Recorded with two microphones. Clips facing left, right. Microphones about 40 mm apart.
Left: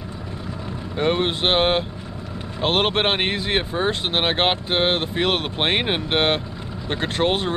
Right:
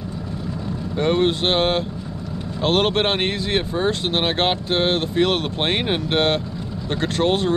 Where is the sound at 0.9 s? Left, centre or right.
Centre.